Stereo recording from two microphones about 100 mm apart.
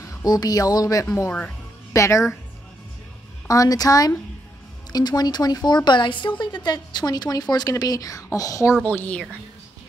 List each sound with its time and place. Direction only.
0.0 s speech: 35° left (ahead or behind)
3.4 s speech: 35° left (ahead or behind)
8.8 s a woman's voice: 15° left (ahead or behind)